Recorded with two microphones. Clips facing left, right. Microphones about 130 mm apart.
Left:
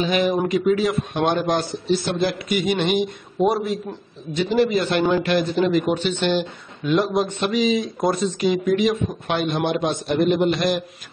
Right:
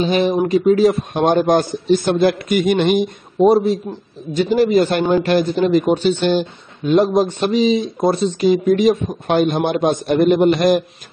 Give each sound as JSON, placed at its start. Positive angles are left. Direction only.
{"t": 0.0, "sound": "a man's voice", "side_deg": -35}
{"t": 3.3, "sound": "speech", "side_deg": -35}